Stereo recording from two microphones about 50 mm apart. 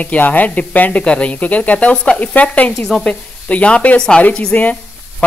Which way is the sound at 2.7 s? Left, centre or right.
Centre.